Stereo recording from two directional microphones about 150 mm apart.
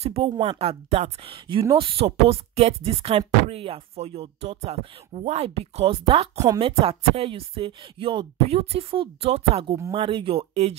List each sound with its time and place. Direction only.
0.0 s speech: 40° right (ahead or behind)